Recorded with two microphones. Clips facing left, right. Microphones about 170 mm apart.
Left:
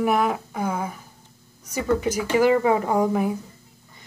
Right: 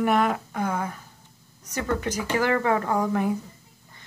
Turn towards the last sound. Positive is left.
turn(degrees=10)  # may be behind; listen again after turning